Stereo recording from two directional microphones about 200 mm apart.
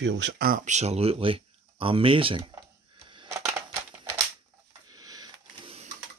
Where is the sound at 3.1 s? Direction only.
25° right (ahead or behind).